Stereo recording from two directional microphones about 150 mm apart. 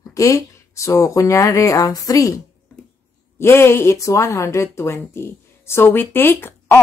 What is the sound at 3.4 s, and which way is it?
Speech, 15° left (ahead or behind).